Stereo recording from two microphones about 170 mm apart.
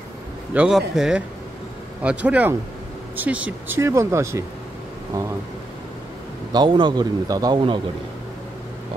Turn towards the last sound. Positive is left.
turn(degrees=-30)  # may be behind; listen again after turning